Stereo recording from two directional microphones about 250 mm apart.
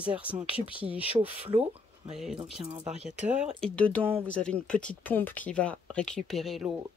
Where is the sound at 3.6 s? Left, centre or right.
Centre.